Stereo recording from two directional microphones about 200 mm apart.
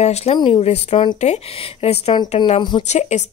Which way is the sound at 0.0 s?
30° left (ahead or behind).